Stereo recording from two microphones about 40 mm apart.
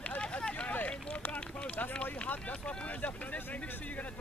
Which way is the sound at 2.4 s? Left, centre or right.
Left.